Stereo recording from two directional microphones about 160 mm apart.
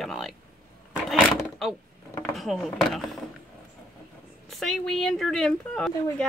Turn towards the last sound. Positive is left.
turn(degrees=5)  # may be behind; listen again after turning